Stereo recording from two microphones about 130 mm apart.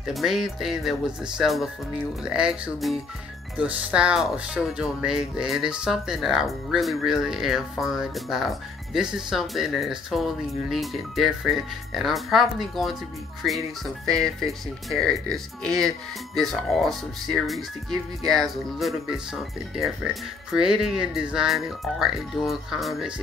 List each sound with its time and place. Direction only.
0.0 s speech: centre (ahead or behind)